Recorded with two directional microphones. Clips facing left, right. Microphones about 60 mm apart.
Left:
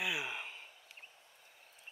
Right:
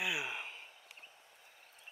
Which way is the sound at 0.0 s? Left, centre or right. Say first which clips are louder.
Even; centre.